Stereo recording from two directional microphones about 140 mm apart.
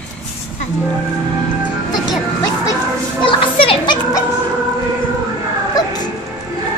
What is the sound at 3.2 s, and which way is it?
A child's voice, 40° left (ahead or behind).